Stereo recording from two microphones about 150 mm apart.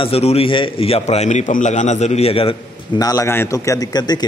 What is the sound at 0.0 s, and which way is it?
A man's voice, 40° left (ahead or behind).